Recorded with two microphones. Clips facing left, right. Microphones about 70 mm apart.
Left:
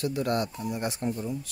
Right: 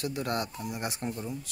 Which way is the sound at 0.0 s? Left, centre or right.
Right.